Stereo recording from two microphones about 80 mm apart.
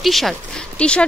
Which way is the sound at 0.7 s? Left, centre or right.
Centre.